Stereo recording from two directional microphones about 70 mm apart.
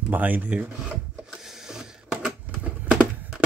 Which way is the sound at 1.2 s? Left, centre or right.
Centre.